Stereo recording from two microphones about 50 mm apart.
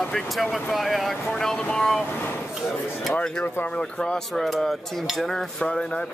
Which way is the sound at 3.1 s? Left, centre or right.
Left.